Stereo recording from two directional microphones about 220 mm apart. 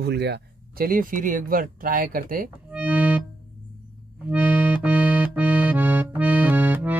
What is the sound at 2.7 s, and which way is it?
Music, 5° right (ahead or behind).